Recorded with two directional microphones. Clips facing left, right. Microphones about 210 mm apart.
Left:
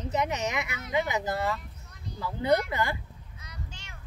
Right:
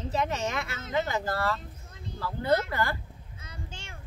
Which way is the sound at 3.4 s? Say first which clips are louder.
Right 2 dB; 25° right (ahead or behind).